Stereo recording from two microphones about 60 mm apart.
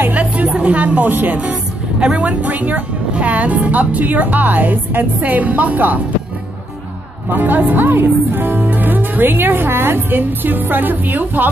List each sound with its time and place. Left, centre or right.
0.1 s a sound: right
0.6 s speech: right
1.4 s speech: centre
7.2 s speech: right